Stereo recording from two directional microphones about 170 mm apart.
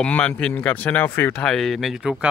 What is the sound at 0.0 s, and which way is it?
Speech, 5° left (ahead or behind).